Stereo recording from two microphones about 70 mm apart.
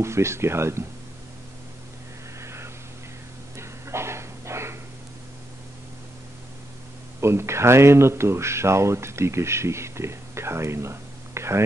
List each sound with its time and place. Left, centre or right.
0.0 s speech: right
2.4 s a sound: right
3.5 s dog: right
7.2 s speech: right